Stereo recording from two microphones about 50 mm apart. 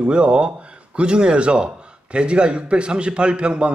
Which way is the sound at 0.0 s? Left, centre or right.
Right.